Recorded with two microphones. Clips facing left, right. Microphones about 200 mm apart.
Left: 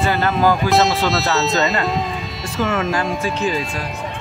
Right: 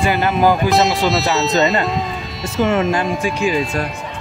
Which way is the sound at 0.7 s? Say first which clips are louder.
Right 1 dB; centre (ahead or behind).